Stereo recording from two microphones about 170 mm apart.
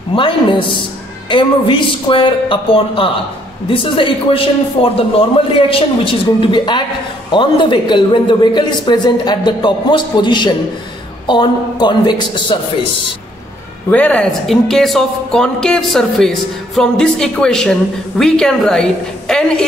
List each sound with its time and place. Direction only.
0.1 s a man's voice: 30° left (ahead or behind)
13.8 s speech: 10° left (ahead or behind)